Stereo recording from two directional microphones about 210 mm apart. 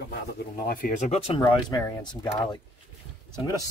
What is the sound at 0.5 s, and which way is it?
Speech, 40° left (ahead or behind).